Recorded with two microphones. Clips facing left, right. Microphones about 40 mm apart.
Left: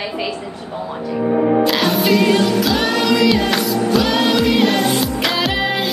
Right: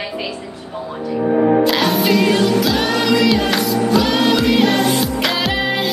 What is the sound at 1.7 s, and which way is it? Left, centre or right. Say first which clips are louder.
Music: even; centre.